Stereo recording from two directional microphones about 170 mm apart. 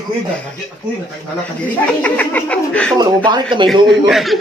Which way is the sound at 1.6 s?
10° left (ahead or behind).